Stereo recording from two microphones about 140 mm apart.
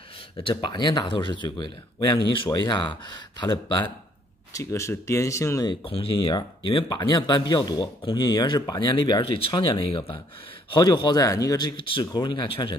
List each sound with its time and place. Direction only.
0.4 s speech: 35° left (ahead or behind)
4.6 s speech: 20° left (ahead or behind)
5.7 s speech: 40° left (ahead or behind)